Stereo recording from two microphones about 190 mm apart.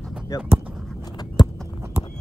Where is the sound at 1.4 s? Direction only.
20° left (ahead or behind).